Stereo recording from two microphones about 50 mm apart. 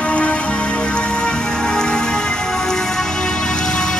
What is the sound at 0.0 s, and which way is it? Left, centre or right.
Music, left.